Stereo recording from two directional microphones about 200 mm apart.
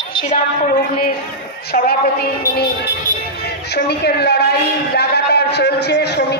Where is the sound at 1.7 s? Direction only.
50° left (ahead or behind).